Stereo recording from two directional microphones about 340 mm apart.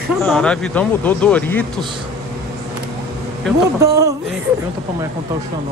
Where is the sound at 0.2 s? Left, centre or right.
Centre.